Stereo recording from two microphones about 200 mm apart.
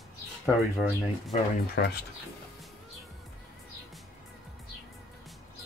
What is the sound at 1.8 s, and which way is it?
Speech, 50° left (ahead or behind).